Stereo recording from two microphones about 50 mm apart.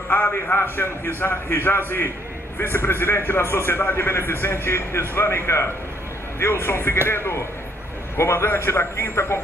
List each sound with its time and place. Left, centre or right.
0.1 s a man's voice: left